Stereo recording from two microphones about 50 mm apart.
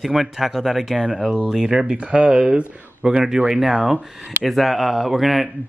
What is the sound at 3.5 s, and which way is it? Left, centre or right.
Speech, centre.